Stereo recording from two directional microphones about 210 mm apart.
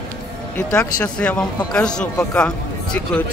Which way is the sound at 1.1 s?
5° left (ahead or behind).